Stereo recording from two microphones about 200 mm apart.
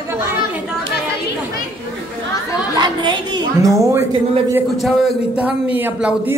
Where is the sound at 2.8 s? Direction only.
20° right (ahead or behind).